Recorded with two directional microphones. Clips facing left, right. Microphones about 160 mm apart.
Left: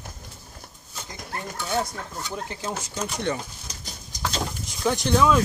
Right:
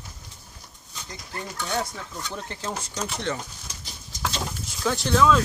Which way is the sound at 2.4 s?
5° left (ahead or behind).